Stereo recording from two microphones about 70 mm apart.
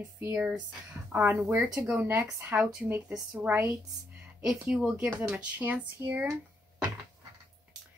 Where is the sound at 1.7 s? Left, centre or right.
Centre.